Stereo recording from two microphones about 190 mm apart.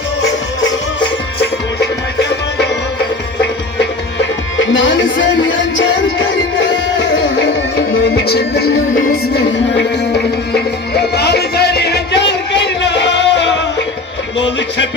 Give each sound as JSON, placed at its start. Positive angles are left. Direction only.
{"t": 1.8, "sound": "music", "side_deg": 60}
{"t": 4.6, "sound": "music", "side_deg": 75}
{"t": 7.9, "sound": "music", "side_deg": 55}